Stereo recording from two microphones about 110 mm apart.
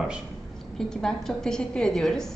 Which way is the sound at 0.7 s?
5° left (ahead or behind).